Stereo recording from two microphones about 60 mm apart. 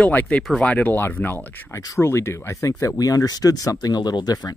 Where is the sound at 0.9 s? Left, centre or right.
Left.